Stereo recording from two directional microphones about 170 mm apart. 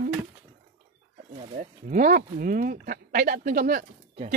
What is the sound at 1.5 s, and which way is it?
Speech, 50° right (ahead or behind).